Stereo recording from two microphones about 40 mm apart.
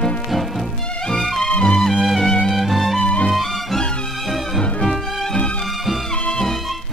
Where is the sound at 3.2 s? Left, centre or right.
Centre.